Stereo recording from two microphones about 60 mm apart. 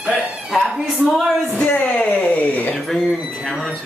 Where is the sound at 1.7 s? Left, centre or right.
Left.